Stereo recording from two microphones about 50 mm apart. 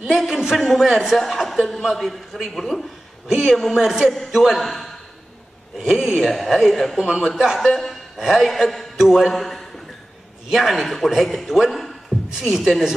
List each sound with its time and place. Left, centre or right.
0.2 s a man's voice: centre
3.7 s a man's voice: centre
5.8 s a man's voice: centre
12.1 s a sound: centre
12.4 s a man's voice: centre